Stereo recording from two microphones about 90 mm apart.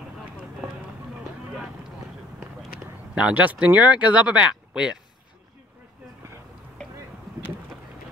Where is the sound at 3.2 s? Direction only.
15° right (ahead or behind).